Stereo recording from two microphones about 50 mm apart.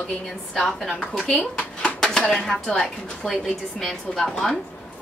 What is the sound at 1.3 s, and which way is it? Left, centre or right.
Speech, left.